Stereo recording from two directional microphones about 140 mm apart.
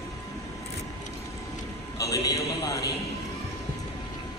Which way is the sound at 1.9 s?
25° left (ahead or behind).